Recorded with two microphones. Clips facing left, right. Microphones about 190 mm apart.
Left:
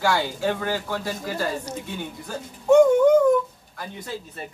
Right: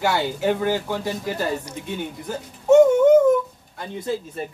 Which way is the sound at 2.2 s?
20° right (ahead or behind).